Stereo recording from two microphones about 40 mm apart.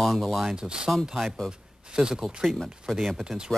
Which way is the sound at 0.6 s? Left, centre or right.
Centre.